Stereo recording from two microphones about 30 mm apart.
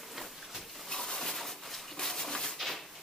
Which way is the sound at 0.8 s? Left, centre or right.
Centre.